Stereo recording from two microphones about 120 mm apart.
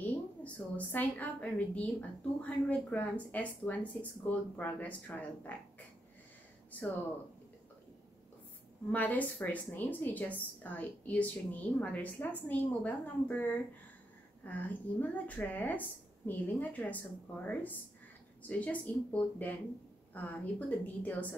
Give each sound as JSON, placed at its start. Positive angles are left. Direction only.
{"t": 0.0, "sound": "a woman's voice", "side_deg": 15}
{"t": 8.9, "sound": "a woman's voice", "side_deg": 15}